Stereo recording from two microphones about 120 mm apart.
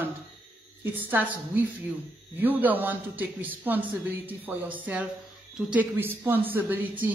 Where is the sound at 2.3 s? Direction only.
15° right (ahead or behind).